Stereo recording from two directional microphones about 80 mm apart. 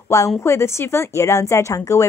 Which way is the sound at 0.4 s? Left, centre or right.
Left.